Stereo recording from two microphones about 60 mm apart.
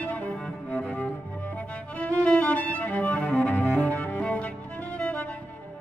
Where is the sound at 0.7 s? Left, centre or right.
Left.